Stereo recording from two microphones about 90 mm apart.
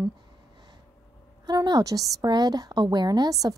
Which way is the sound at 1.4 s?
50° right (ahead or behind).